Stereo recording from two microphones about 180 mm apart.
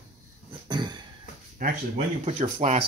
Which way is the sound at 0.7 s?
25° right (ahead or behind).